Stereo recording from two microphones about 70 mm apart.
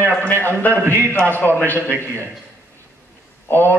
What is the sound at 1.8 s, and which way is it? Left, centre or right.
Speech, right.